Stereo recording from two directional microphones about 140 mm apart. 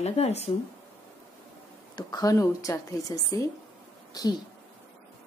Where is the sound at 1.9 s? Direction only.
30° left (ahead or behind).